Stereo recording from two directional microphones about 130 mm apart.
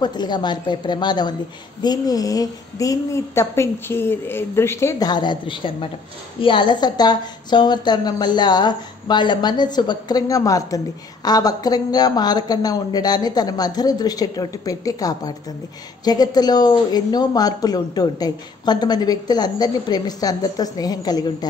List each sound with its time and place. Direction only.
0.0 s a woman's voice: 35° left (ahead or behind)